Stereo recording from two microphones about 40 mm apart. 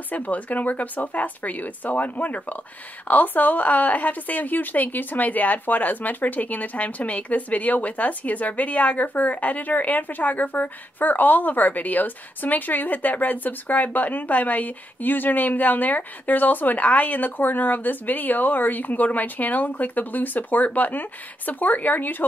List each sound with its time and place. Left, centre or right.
0.1 s a woman's voice: left